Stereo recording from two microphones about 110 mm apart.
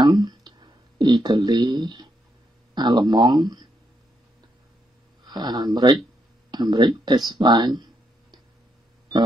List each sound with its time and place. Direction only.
0.0 s a sound: 40° right (ahead or behind)
2.7 s speech: 40° right (ahead or behind)
5.2 s speech: 40° right (ahead or behind)